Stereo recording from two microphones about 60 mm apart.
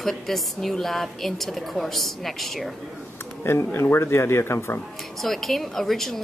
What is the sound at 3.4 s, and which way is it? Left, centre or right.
Speech, left.